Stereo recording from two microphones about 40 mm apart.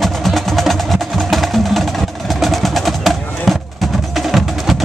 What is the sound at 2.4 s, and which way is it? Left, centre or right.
Percussion, centre.